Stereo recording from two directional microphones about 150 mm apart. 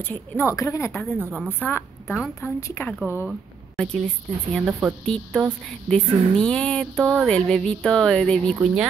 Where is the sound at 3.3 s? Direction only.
5° left (ahead or behind).